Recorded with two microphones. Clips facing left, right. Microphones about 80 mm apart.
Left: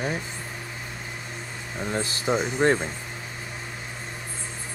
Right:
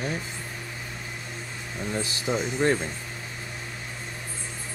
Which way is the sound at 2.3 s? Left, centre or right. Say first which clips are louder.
Left 3 dB; left.